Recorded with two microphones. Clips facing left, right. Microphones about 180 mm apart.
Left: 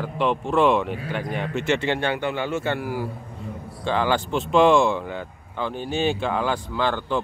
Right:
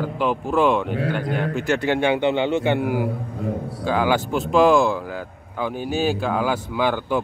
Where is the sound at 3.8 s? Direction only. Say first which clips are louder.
Right 2 dB; 5° right (ahead or behind).